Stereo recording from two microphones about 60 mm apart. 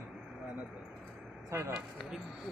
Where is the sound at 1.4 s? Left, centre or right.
Right.